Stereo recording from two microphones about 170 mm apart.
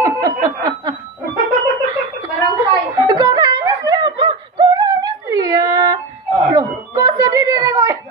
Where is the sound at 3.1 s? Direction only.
25° right (ahead or behind).